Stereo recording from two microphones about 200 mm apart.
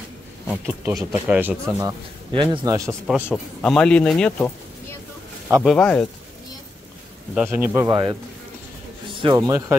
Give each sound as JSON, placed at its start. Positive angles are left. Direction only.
{"t": 0.5, "sound": "a man's voice", "side_deg": -10}
{"t": 1.8, "sound": "a man's voice", "side_deg": -20}
{"t": 5.6, "sound": "a man's voice", "side_deg": 5}
{"t": 7.3, "sound": "a man's voice", "side_deg": -10}
{"t": 7.9, "sound": "speech", "side_deg": -25}
{"t": 9.2, "sound": "speech", "side_deg": -20}